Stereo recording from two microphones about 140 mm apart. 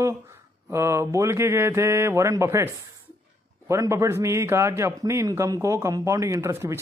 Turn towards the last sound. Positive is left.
turn(degrees=-20)  # may be behind; listen again after turning